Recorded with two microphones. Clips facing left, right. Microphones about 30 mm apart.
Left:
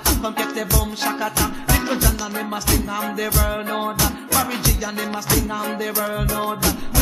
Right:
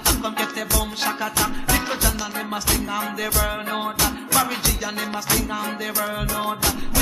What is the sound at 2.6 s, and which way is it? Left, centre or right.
Music, centre.